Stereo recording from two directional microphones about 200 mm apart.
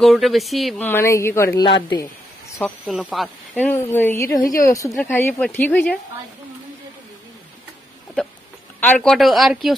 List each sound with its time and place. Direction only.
0.0 s speech: centre (ahead or behind)
1.7 s speech: 25° left (ahead or behind)
2.9 s speech: centre (ahead or behind)
8.8 s speech: 5° left (ahead or behind)